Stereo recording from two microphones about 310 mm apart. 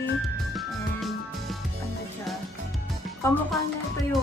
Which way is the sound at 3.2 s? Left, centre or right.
Centre.